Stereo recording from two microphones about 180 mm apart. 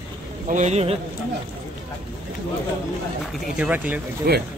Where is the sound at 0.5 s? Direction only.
40° right (ahead or behind).